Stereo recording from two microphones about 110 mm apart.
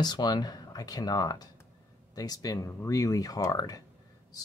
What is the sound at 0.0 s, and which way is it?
Speech, 40° left (ahead or behind).